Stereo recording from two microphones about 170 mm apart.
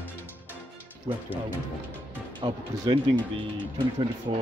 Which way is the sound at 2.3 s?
30° right (ahead or behind).